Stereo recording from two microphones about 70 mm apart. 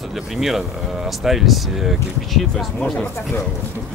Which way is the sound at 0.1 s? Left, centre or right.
Centre.